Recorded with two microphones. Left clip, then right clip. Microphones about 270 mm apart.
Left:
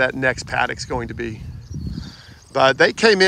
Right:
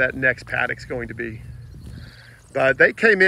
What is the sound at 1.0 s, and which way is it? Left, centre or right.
Speech, left.